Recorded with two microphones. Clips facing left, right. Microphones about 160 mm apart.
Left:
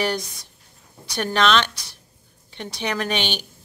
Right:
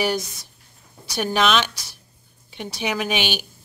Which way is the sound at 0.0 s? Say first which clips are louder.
Right 1 dB; 5° right (ahead or behind).